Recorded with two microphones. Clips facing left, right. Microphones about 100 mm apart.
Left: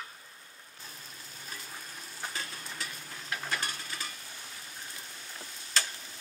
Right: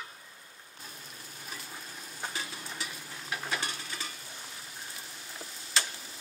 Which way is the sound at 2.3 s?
5° right (ahead or behind).